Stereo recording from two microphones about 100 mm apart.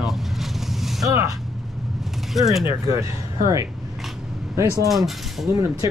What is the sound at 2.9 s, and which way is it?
Speech, 30° right (ahead or behind).